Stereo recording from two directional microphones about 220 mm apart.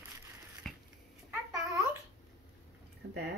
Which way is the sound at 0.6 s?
Centre (ahead or behind).